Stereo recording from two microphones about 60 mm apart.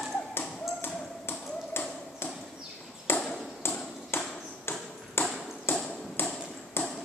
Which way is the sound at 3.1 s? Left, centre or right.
Left.